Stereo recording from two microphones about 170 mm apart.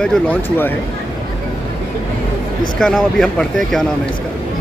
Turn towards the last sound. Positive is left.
turn(degrees=5)  # may be behind; listen again after turning